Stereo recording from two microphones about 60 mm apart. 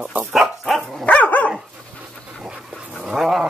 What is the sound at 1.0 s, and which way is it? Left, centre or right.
Dog, left.